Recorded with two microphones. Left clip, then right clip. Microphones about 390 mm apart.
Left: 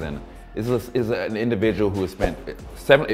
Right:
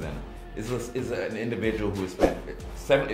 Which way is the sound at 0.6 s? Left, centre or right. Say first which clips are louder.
Left 8 dB; left.